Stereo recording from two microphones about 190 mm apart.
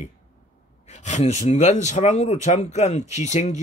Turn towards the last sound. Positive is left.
turn(degrees=40)  # may be behind; listen again after turning